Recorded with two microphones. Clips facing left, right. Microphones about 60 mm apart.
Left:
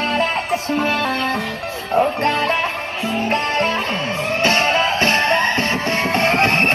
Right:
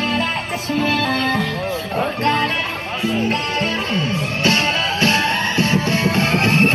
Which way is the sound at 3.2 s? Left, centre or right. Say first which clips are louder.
Left 2 dB; left.